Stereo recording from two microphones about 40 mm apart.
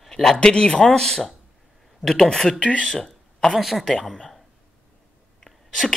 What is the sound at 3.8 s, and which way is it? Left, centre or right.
Speech, centre.